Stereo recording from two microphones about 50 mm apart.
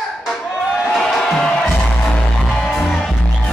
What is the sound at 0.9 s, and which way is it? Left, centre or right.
Music, centre.